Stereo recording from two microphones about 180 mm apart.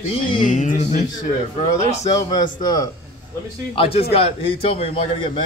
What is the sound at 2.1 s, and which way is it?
Speech, 25° left (ahead or behind).